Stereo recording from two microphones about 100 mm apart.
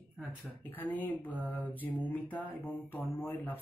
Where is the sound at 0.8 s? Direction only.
20° left (ahead or behind).